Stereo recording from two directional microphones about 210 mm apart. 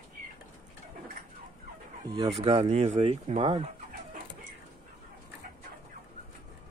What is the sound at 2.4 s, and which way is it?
Speech, 30° right (ahead or behind).